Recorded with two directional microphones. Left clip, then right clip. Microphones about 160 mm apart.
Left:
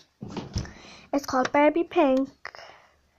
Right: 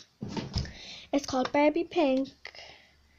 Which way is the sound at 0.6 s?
35° right (ahead or behind).